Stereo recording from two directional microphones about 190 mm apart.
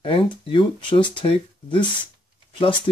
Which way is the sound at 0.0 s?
25° left (ahead or behind).